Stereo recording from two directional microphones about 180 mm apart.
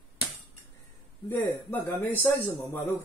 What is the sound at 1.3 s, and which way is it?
Speech, 10° left (ahead or behind).